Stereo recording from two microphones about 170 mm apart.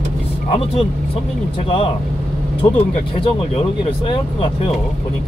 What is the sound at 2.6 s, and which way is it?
Speech, 20° left (ahead or behind).